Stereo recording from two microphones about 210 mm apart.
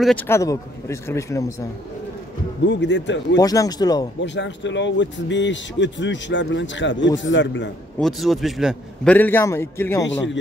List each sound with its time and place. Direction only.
0.0 s a man's voice: 5° left (ahead or behind)
2.6 s speech: 60° left (ahead or behind)
3.3 s a man's voice: 15° left (ahead or behind)
4.2 s speech: 60° left (ahead or behind)
8.0 s a man's voice: centre (ahead or behind)